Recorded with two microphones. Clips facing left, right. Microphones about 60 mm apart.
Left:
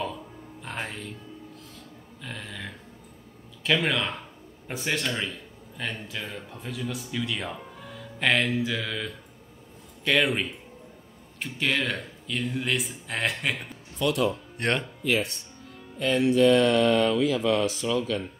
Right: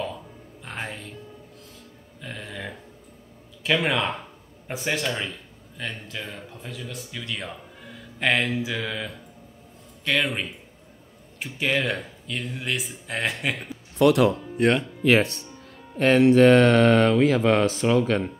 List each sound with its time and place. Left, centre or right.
0.0 s music: centre
2.2 s burping: centre
3.6 s speech: centre
13.9 s speech: right
14.6 s speech: centre
15.0 s speech: right
16.0 s mantra: right